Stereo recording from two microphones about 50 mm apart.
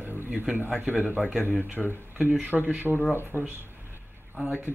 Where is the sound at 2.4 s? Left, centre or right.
Right.